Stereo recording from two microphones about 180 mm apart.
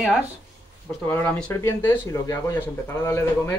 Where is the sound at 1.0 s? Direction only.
10° left (ahead or behind).